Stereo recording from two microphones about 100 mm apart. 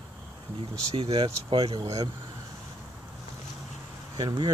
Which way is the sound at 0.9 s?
70° right (ahead or behind).